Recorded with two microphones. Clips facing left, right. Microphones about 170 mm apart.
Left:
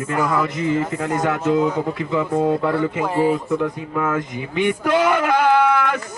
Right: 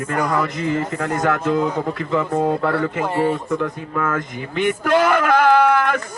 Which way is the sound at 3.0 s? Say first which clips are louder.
Left 2 dB; centre (ahead or behind).